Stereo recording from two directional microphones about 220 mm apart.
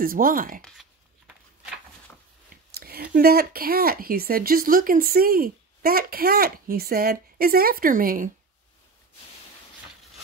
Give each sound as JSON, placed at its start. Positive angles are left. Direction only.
{"t": 0.0, "sound": "speech", "side_deg": -40}
{"t": 0.6, "sound": "a sound", "side_deg": 0}
{"t": 2.7, "sound": "speech", "side_deg": -45}